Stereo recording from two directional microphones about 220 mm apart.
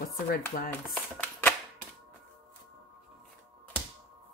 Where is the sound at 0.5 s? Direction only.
40° left (ahead or behind).